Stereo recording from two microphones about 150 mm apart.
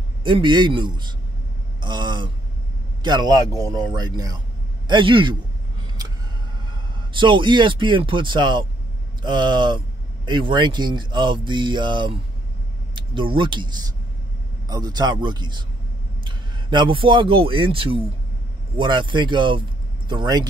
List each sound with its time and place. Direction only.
0.2 s speech: 30° right (ahead or behind)
4.8 s a sound: 35° right (ahead or behind)
6.7 s a man's voice: 30° right (ahead or behind)